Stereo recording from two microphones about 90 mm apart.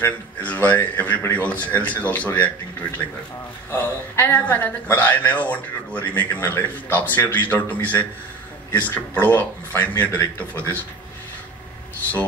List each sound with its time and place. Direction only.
0.0 s a man's voice: 20° left (ahead or behind)
3.7 s speech: 25° left (ahead or behind)